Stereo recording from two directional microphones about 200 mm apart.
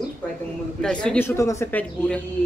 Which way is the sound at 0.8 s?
5° left (ahead or behind).